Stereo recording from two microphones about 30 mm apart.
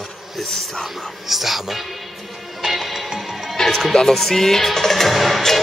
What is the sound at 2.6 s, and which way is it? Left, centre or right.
Music, centre.